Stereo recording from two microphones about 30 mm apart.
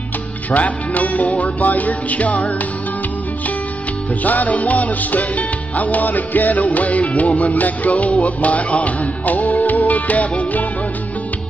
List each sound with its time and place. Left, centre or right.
0.5 s music: left
4.2 s music: left